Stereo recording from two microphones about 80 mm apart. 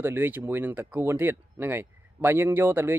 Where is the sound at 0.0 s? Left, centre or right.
Right.